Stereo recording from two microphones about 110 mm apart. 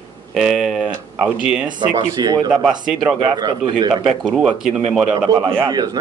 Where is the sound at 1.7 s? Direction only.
40° right (ahead or behind).